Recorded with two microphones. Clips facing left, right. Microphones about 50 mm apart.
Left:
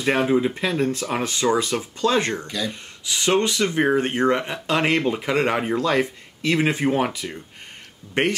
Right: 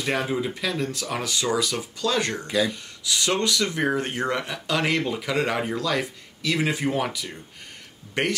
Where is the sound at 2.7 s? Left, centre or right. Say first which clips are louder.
Right 1 dB; left.